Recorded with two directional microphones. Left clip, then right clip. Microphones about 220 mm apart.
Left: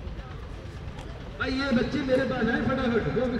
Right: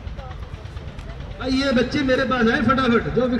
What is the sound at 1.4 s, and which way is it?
A man's voice, 10° right (ahead or behind).